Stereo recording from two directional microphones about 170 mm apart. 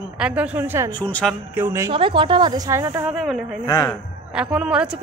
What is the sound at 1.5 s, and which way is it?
Speech, 15° right (ahead or behind).